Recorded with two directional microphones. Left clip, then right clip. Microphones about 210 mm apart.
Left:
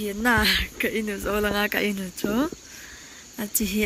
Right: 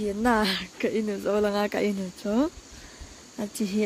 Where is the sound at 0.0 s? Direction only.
5° right (ahead or behind).